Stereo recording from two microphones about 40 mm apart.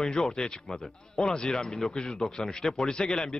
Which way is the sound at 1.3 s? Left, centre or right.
Left.